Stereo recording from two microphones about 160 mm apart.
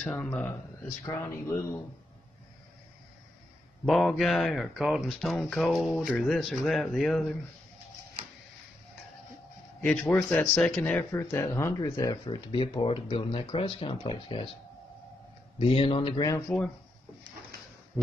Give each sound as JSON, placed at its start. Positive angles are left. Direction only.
{"t": 0.0, "sound": "speech", "side_deg": 5}
{"t": 3.8, "sound": "speech", "side_deg": 0}
{"t": 9.8, "sound": "a man's voice", "side_deg": 10}
{"t": 15.6, "sound": "speech", "side_deg": 35}
{"t": 16.3, "sound": "speech", "side_deg": 20}
{"t": 17.9, "sound": "speech", "side_deg": -10}